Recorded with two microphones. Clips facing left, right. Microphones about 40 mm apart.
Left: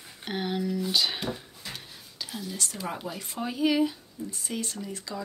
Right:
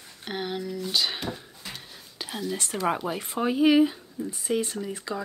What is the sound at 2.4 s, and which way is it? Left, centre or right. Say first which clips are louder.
Speech: right 9 dB; right.